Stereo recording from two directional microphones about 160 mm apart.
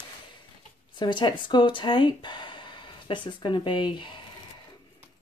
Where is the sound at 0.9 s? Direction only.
30° left (ahead or behind).